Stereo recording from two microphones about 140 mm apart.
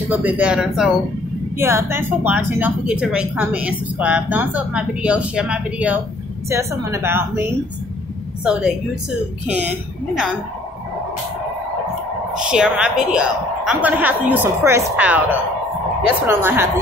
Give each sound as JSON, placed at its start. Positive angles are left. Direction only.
{"t": 0.1, "sound": "a woman's voice", "side_deg": -10}
{"t": 1.6, "sound": "a woman's voice", "side_deg": -20}
{"t": 6.5, "sound": "a woman's voice", "side_deg": -20}
{"t": 8.5, "sound": "a woman's voice", "side_deg": -5}
{"t": 12.4, "sound": "a woman's voice", "side_deg": -5}